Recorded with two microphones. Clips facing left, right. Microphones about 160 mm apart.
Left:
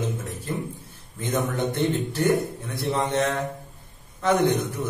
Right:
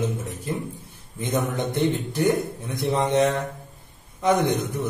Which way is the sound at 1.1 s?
15° right (ahead or behind).